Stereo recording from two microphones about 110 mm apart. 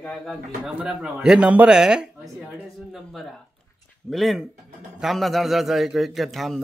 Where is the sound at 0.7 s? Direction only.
10° right (ahead or behind).